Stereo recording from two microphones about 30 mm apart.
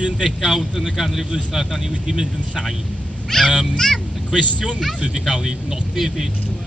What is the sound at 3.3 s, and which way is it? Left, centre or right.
Speech, centre.